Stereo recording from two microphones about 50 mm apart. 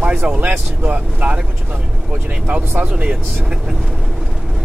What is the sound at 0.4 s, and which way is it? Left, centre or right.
Speech, right.